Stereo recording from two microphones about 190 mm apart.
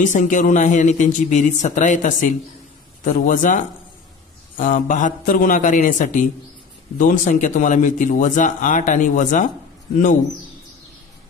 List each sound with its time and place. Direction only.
0.0 s a man's voice: 40° left (ahead or behind)